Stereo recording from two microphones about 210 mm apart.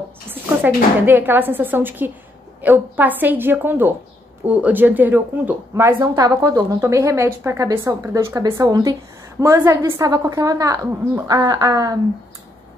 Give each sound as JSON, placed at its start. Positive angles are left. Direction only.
{"t": 0.3, "sound": "speech", "side_deg": -10}